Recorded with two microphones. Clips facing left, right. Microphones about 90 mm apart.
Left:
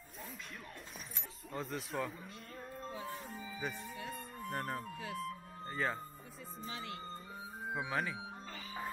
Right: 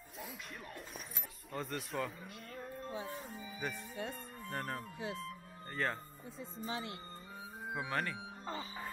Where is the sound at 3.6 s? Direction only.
Centre (ahead or behind).